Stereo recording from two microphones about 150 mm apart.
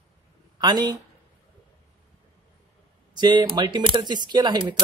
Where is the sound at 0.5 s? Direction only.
30° right (ahead or behind).